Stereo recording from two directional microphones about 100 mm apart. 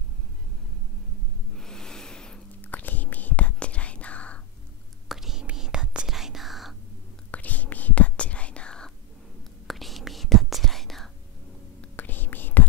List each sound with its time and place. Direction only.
1.5 s whispering: 5° left (ahead or behind)
5.0 s whispering: 5° right (ahead or behind)
7.2 s whispering: 15° left (ahead or behind)
11.8 s whispering: 20° left (ahead or behind)